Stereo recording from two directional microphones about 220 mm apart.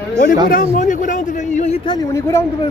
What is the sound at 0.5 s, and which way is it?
A man's voice, 35° left (ahead or behind).